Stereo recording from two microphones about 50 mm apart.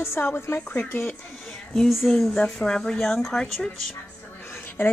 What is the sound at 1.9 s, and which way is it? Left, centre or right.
Speech, centre.